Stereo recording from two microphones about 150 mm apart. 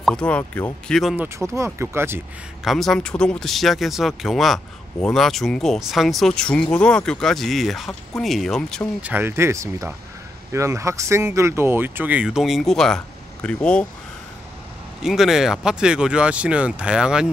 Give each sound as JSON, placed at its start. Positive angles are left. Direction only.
{"t": 0.0, "sound": "speech", "side_deg": 5}
{"t": 1.5, "sound": "speech", "side_deg": -20}
{"t": 2.6, "sound": "speech", "side_deg": 0}
{"t": 9.0, "sound": "speech", "side_deg": -15}
{"t": 15.0, "sound": "speech", "side_deg": 0}